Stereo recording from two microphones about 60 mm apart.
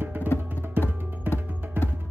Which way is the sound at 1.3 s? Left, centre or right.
Right.